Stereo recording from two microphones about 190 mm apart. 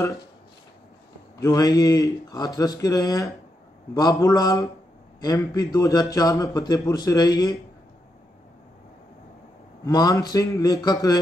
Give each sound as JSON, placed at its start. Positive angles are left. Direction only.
{"t": 1.4, "sound": "a man's voice", "side_deg": 20}
{"t": 9.8, "sound": "a man's voice", "side_deg": 20}